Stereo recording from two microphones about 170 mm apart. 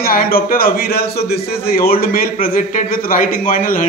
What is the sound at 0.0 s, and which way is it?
A man's voice, 60° left (ahead or behind).